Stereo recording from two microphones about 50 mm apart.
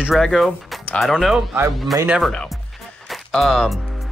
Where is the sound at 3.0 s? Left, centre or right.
Centre.